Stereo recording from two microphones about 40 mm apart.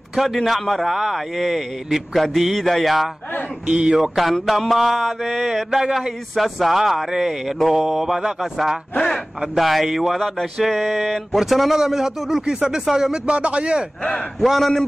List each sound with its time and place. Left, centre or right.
0.5 s mantra: centre
3.6 s speech: centre
4.2 s mantra: centre
7.8 s speech: centre
8.4 s mantra: centre
11.8 s speech: centre
13.4 s speech: right
14.4 s mantra: centre